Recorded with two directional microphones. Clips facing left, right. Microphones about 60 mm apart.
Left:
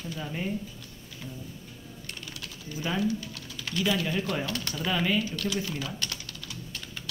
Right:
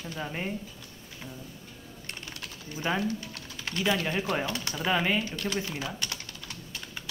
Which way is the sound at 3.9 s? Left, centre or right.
Right.